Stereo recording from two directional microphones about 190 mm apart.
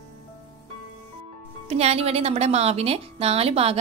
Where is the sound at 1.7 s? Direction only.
35° right (ahead or behind).